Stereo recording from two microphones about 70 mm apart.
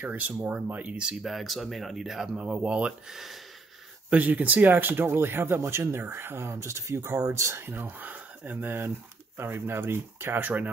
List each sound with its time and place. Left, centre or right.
0.0 s speech: right
1.2 s speech: centre
3.1 s speech: centre
4.1 s speech: right